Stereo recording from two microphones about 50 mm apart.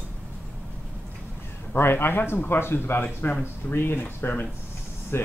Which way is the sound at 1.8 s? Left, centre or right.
Left.